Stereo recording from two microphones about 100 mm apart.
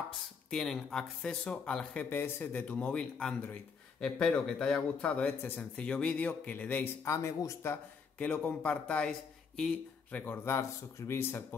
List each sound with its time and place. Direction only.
0.5 s a man's voice: 5° left (ahead or behind)
2.0 s a man's voice: 20° left (ahead or behind)
5.2 s a man's voice: 20° left (ahead or behind)
7.1 s a man's voice: 30° left (ahead or behind)